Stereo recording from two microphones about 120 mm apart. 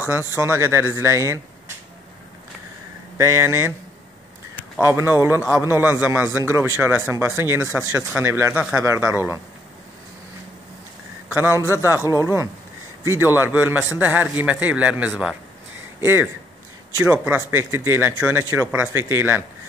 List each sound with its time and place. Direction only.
0.4 s a man's voice: 20° right (ahead or behind)
3.2 s a man's voice: 25° right (ahead or behind)
4.7 s a man's voice: 15° right (ahead or behind)
11.2 s a man's voice: 20° right (ahead or behind)